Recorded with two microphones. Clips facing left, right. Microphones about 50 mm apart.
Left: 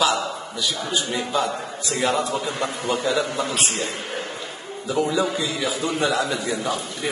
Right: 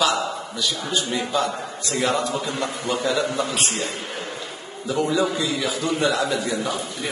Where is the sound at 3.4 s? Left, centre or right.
Left.